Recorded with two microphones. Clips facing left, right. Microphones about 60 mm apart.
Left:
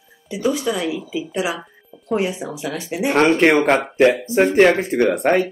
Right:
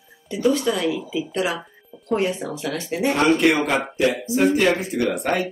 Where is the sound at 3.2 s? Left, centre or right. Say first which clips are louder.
Left 4 dB; left.